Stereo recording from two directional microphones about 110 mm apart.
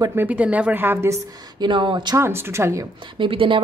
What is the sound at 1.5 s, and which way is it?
Speech, 45° right (ahead or behind).